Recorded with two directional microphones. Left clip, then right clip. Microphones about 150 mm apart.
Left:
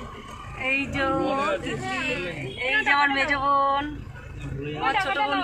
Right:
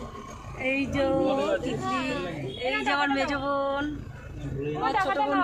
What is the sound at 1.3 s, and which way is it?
Speech, 25° left (ahead or behind).